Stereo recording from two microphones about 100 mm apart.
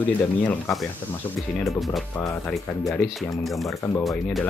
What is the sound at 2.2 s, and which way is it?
Speech, 15° left (ahead or behind).